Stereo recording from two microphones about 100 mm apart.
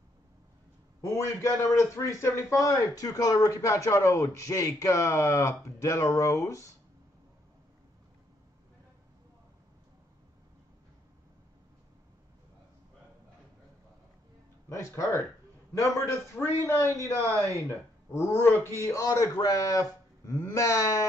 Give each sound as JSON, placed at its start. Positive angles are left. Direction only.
{"t": 1.0, "sound": "a man's voice", "side_deg": 30}
{"t": 14.7, "sound": "a man's voice", "side_deg": 30}